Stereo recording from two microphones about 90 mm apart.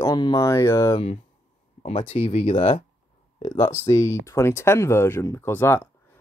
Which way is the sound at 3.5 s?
30° left (ahead or behind).